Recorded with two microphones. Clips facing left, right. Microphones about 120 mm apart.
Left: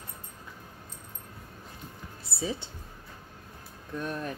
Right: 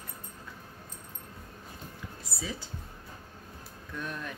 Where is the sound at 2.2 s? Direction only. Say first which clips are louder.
Left 6 dB; 30° left (ahead or behind).